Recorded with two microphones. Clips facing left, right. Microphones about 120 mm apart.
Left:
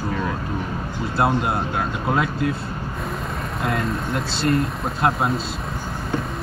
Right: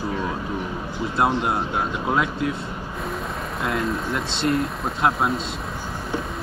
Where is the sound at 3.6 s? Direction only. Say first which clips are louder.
Even; centre (ahead or behind).